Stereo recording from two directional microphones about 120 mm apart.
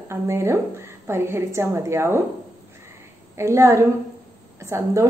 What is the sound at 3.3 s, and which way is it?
A woman's voice, 25° right (ahead or behind).